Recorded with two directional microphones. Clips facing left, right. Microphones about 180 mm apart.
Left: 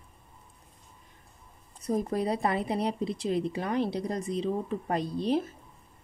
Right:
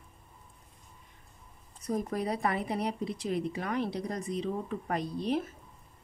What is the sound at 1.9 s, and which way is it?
A woman's voice, 30° left (ahead or behind).